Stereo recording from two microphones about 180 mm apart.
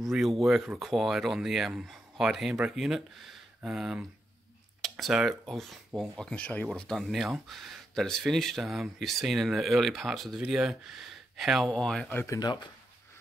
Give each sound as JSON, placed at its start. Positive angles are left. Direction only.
{"t": 0.1, "sound": "speech", "side_deg": 0}
{"t": 12.3, "sound": "speech", "side_deg": 20}